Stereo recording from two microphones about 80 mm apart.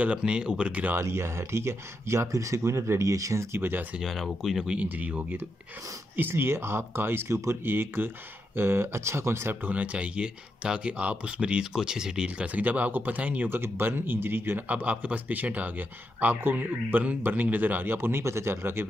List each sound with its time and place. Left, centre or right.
0.0 s speech: centre
0.9 s speech: right
4.0 s speech: centre
4.7 s speech: centre
14.8 s speech: centre